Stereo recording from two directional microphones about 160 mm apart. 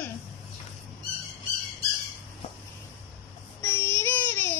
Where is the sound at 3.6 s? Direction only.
15° left (ahead or behind).